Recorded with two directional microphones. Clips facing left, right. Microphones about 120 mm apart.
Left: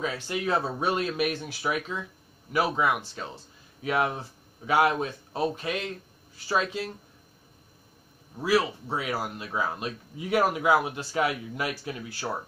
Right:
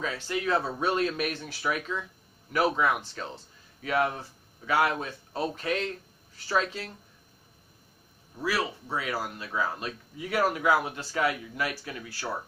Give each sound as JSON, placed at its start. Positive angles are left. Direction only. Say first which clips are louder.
{"t": 0.0, "sound": "speech", "louder": "left 1 dB", "side_deg": 15}
{"t": 8.4, "sound": "a man's voice", "louder": "left 5 dB", "side_deg": 20}